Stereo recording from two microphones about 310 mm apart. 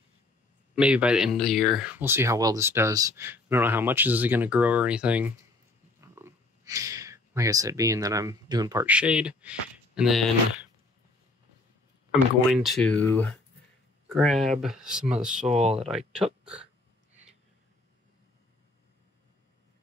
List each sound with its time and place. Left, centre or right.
0.7 s speech: centre
12.1 s speech: centre
15.4 s speech: right
16.2 s speech: centre